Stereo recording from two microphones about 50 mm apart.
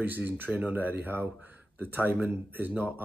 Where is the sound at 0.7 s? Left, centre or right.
Right.